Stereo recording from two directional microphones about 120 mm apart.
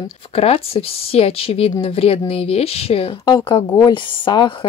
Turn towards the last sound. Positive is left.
turn(degrees=40)  # may be behind; listen again after turning